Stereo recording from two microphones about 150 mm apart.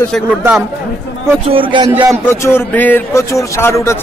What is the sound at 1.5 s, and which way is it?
Speech, 30° right (ahead or behind).